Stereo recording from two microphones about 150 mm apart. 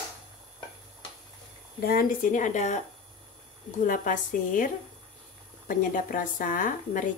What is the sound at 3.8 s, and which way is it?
Speech, 65° left (ahead or behind).